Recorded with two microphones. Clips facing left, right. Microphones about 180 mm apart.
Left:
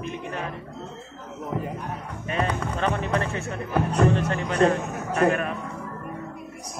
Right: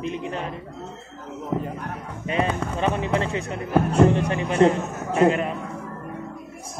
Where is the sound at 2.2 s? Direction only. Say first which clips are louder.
Right 3 dB; 20° right (ahead or behind).